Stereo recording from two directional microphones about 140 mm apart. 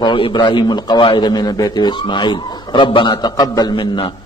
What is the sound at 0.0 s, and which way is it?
A man's voice, 35° left (ahead or behind).